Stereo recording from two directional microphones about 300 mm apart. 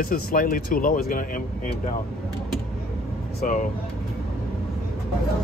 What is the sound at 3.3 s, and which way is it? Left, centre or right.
Speech, left.